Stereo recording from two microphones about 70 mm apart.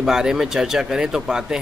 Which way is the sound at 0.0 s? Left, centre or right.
Centre.